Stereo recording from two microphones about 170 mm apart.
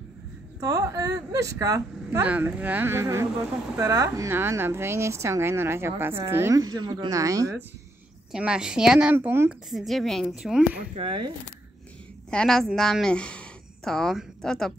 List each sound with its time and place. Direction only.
0.6 s speech: 20° right (ahead or behind)
2.2 s a woman's voice: 10° right (ahead or behind)
8.3 s a woman's voice: 5° right (ahead or behind)
9.7 s a woman's voice: centre (ahead or behind)
11.0 s speech: 30° right (ahead or behind)
12.3 s a woman's voice: 5° left (ahead or behind)